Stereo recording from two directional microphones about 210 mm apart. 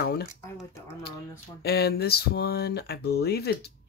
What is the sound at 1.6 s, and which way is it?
Speech, 50° left (ahead or behind).